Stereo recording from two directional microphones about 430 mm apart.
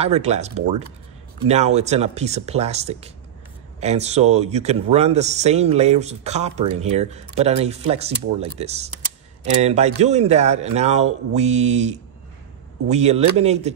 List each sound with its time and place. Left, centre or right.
0.0 s speech: centre